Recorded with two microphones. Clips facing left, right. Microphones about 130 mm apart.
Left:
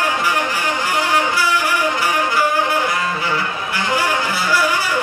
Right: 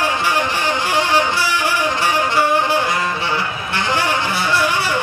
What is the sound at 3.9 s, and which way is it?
Music, 25° right (ahead or behind).